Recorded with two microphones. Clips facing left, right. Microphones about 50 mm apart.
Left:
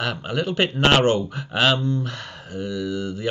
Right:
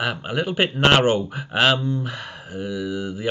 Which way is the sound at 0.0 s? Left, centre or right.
Centre.